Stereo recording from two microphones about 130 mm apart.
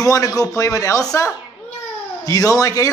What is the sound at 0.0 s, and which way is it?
A man's voice, 25° left (ahead or behind).